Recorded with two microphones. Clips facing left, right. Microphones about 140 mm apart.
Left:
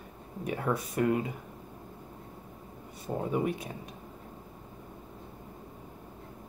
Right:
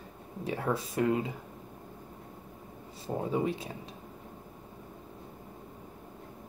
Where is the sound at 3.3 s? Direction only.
25° right (ahead or behind).